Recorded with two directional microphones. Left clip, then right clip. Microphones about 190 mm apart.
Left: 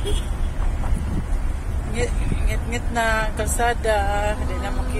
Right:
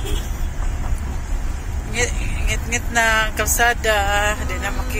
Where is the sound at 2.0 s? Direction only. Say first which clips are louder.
Right 4 dB; 10° left (ahead or behind).